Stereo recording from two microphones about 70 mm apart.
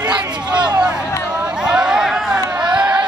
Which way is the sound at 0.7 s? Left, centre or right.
Centre.